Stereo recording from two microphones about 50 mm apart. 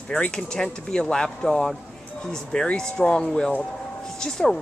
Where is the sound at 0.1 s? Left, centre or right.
Centre.